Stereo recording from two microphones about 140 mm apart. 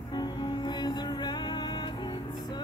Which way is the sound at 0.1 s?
30° left (ahead or behind).